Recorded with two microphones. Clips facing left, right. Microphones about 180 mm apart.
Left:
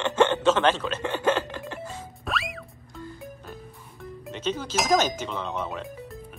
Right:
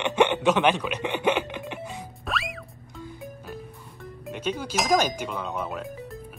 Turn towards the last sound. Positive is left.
turn(degrees=0)  # may be behind; listen again after turning